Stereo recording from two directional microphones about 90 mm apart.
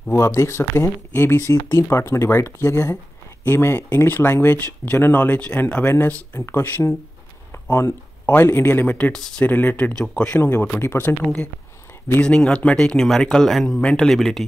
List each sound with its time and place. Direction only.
0.1 s speech: 30° left (ahead or behind)
9.9 s speech: 10° left (ahead or behind)
10.4 s speech: 25° left (ahead or behind)
12.2 s speech: 10° left (ahead or behind)